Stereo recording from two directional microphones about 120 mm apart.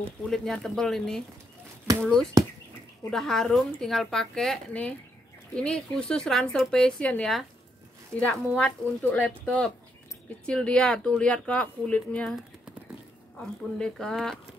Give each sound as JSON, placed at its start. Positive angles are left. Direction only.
{"t": 0.2, "sound": "speech", "side_deg": 5}
{"t": 1.9, "sound": "speech", "side_deg": -25}
{"t": 3.1, "sound": "speech", "side_deg": 5}
{"t": 13.7, "sound": "speech", "side_deg": 5}